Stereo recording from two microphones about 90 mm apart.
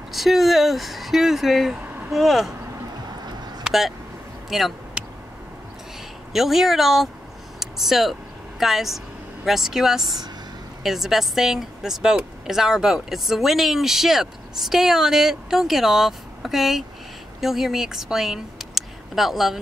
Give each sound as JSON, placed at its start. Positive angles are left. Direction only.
{"t": 0.1, "sound": "a woman's voice", "side_deg": 0}
{"t": 3.6, "sound": "a sound", "side_deg": -5}
{"t": 4.5, "sound": "speech", "side_deg": 0}
{"t": 5.0, "sound": "a sound", "side_deg": -10}
{"t": 6.3, "sound": "a woman's voice", "side_deg": -5}
{"t": 10.0, "sound": "speech", "side_deg": -50}
{"t": 10.8, "sound": "a woman's voice", "side_deg": -5}